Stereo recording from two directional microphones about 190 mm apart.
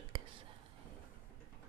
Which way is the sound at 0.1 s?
30° right (ahead or behind).